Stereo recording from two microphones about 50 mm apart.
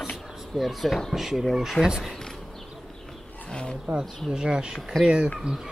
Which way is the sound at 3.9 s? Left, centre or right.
Centre.